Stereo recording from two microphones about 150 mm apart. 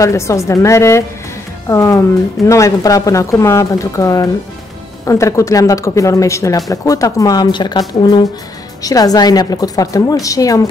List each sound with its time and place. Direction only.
0.0 s speech: 20° left (ahead or behind)
8.8 s speech: 25° left (ahead or behind)